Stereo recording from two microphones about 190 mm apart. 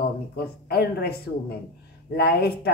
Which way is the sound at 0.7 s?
55° left (ahead or behind).